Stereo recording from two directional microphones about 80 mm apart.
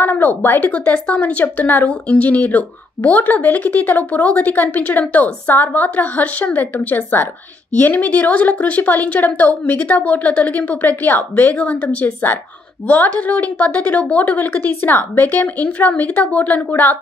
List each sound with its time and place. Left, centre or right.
0.0 s speech: left